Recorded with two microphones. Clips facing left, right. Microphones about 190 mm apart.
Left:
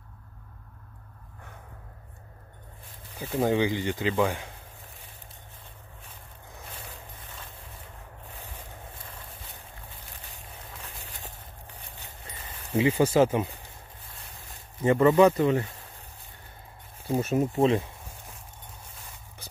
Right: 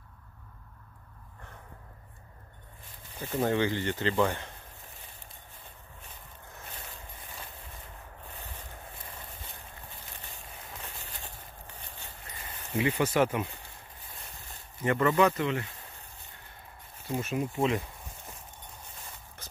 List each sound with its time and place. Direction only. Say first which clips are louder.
3.2 s speech: left 3 dB; 10° left (ahead or behind)
12.3 s speech: left 4 dB; 25° left (ahead or behind)
14.8 s speech: left 6 dB; 25° left (ahead or behind)
17.1 s speech: left 6 dB; 40° left (ahead or behind)